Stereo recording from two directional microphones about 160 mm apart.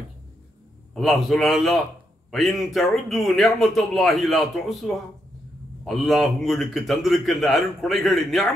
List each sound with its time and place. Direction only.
0.9 s speech: centre (ahead or behind)